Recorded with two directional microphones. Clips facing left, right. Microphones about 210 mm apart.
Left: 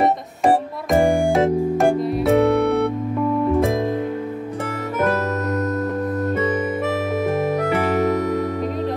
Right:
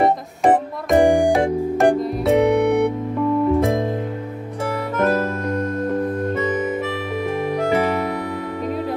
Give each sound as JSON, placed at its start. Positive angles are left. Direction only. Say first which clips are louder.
{"t": 0.9, "sound": "music", "louder": "right 2 dB", "side_deg": -15}
{"t": 1.8, "sound": "music", "louder": "right 1 dB", "side_deg": 0}
{"t": 2.3, "sound": "music", "louder": "right 2 dB", "side_deg": -15}
{"t": 3.5, "sound": "music", "louder": "even", "side_deg": 0}